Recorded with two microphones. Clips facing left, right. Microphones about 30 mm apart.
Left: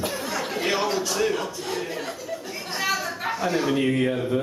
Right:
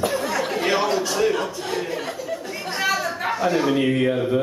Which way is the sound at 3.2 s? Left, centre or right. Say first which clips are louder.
Right 3 dB; centre.